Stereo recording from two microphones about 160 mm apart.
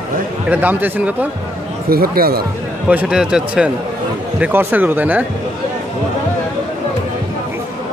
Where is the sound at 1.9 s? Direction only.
70° right (ahead or behind).